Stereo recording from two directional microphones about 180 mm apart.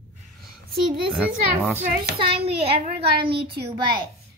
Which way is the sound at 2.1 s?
30° right (ahead or behind).